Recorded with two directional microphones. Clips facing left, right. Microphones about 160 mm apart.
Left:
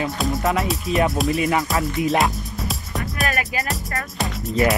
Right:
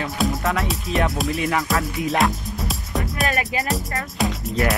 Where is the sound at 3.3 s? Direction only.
20° right (ahead or behind).